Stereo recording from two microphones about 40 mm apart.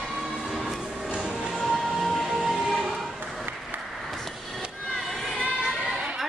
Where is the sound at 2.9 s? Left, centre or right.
Centre.